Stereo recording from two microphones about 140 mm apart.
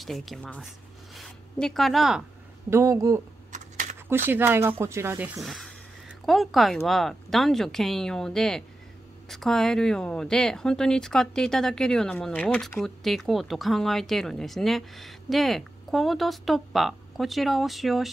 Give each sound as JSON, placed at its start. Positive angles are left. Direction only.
{"t": 0.0, "sound": "speech", "side_deg": 0}
{"t": 1.1, "sound": "a sound", "side_deg": 0}
{"t": 2.7, "sound": "speech", "side_deg": -20}
{"t": 3.5, "sound": "typing", "side_deg": -60}
{"t": 4.3, "sound": "speech", "side_deg": -15}
{"t": 5.4, "sound": "speech", "side_deg": 0}